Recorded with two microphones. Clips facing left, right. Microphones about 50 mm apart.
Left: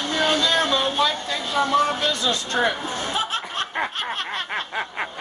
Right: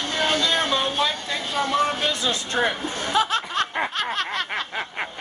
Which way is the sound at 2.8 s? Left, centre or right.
Centre.